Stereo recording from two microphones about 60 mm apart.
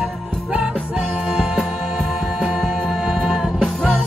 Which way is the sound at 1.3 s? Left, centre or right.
Centre.